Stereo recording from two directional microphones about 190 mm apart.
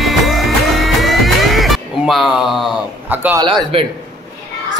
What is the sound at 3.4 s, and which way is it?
Speech, 25° right (ahead or behind).